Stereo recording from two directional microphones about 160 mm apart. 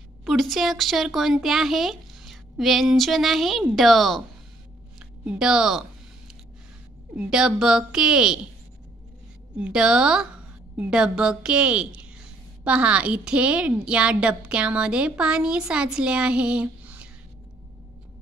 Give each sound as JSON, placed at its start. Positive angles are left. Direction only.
{"t": 0.2, "sound": "speech", "side_deg": 0}
{"t": 4.9, "sound": "a sound", "side_deg": -5}
{"t": 7.2, "sound": "speech", "side_deg": -5}
{"t": 9.6, "sound": "a woman's voice", "side_deg": -5}